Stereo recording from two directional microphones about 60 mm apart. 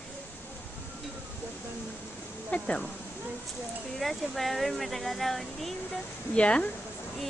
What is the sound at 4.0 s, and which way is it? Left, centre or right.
Speech, centre.